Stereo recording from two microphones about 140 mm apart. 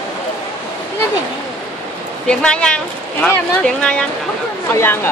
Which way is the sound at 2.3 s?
5° left (ahead or behind).